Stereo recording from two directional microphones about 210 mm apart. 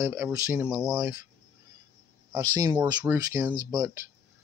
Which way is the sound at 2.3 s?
20° right (ahead or behind).